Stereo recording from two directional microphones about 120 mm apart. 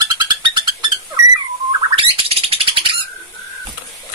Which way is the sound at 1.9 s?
50° right (ahead or behind).